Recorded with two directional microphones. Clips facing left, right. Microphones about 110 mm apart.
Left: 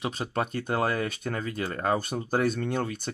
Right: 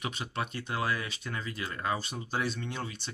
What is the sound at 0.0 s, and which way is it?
Speech, 40° left (ahead or behind).